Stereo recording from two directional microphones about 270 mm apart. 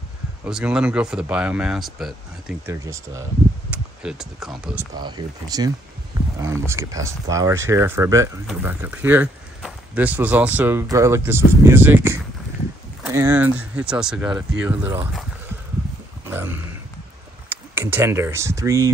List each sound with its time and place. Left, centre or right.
0.5 s speech: centre
4.9 s speech: centre
16.3 s a sound: centre
17.5 s speech: centre